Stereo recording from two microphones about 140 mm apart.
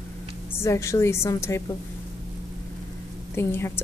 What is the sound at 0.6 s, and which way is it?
Speech, 20° left (ahead or behind).